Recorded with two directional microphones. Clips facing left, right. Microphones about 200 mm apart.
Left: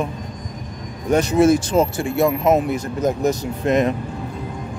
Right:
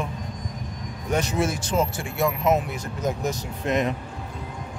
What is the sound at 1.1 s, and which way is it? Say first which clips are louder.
Speech: left 10 dB; 40° left (ahead or behind).